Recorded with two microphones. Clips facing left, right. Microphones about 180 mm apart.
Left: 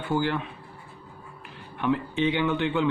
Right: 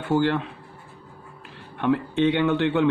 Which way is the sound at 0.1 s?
70° right (ahead or behind).